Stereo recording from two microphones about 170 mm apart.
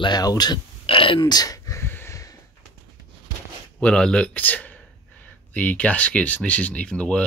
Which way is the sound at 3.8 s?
5° left (ahead or behind).